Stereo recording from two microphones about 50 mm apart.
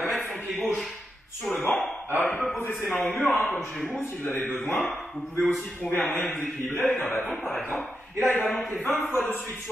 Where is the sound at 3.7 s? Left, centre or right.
Centre.